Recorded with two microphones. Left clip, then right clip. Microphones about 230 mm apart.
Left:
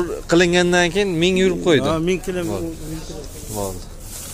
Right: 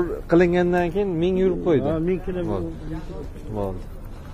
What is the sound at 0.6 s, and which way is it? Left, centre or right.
Speech, left.